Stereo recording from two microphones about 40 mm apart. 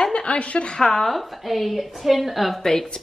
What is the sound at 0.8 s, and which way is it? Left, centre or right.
Speech, centre.